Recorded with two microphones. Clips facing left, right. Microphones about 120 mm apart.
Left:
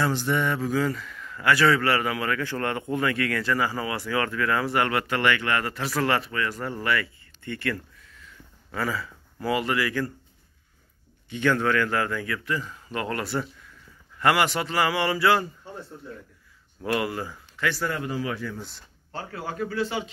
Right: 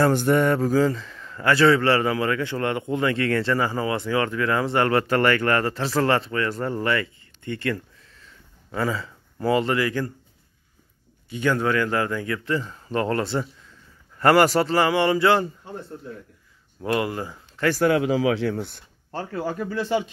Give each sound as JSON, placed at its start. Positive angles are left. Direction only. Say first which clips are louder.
{"t": 0.0, "sound": "a man's voice", "louder": "right 6 dB", "side_deg": -50}
{"t": 11.3, "sound": "a man's voice", "louder": "right 1 dB", "side_deg": -15}
{"t": 14.1, "sound": "a man's voice", "louder": "right 6 dB", "side_deg": -40}
{"t": 16.8, "sound": "speech", "louder": "right 2 dB", "side_deg": -25}
{"t": 17.8, "sound": "speech", "louder": "right 9 dB", "side_deg": -85}